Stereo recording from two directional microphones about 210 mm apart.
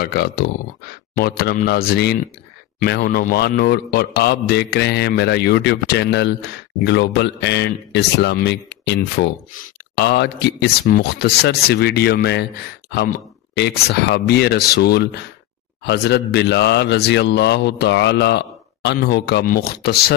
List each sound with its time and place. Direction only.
0.0 s speech: 50° left (ahead or behind)
13.6 s speech: 55° left (ahead or behind)